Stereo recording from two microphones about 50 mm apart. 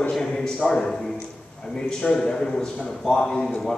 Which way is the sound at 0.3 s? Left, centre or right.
Left.